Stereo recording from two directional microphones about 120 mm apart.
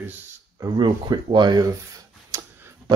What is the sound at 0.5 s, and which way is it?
Speech, 35° right (ahead or behind).